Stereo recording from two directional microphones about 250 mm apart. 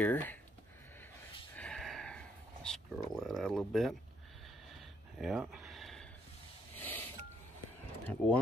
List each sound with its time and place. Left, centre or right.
0.0 s speech: centre
1.6 s a sound: centre
6.8 s music: centre
8.0 s speech: centre